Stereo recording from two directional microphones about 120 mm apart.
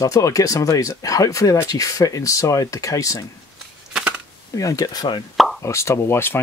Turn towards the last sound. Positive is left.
turn(degrees=20)  # may be behind; listen again after turning